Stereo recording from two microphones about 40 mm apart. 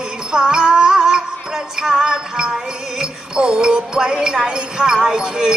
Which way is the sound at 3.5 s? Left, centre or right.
Centre.